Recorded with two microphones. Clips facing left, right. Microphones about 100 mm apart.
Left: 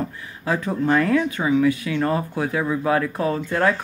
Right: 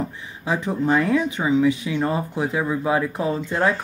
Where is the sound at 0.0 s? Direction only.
15° right (ahead or behind).